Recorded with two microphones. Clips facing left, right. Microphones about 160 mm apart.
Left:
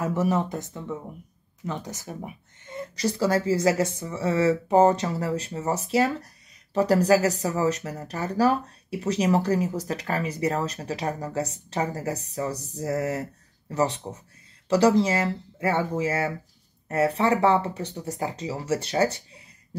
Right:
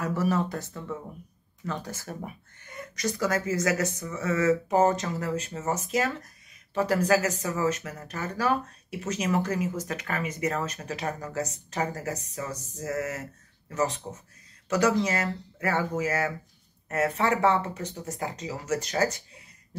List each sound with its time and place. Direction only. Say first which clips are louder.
0.0 s speech: left 2 dB; 20° left (ahead or behind)